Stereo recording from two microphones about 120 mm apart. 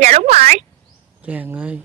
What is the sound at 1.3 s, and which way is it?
Speech, 15° right (ahead or behind).